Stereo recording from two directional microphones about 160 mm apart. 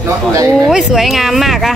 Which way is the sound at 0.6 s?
Centre (ahead or behind).